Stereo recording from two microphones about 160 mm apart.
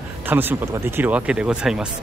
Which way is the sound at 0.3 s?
10° right (ahead or behind).